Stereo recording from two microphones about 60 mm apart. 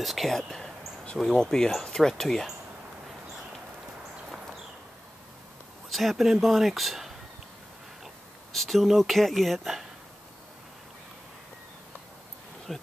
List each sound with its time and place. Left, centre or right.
0.0 s speech: centre
5.9 s speech: centre
8.5 s speech: centre
12.7 s speech: centre